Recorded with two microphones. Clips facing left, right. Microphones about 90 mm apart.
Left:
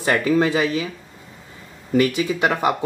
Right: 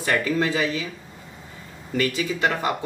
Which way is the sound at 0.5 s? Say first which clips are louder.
Left 4 dB; 35° left (ahead or behind).